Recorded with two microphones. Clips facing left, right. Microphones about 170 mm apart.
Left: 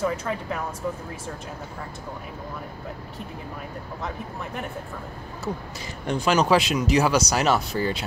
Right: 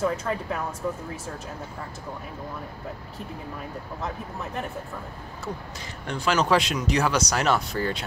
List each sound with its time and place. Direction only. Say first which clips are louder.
0.0 s speech: even; centre (ahead or behind)
6.0 s speech: left 3 dB; 15° left (ahead or behind)
6.5 s speech: left 3 dB; 5° left (ahead or behind)